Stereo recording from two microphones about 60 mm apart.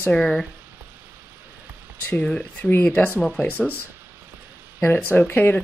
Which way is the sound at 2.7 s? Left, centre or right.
Left.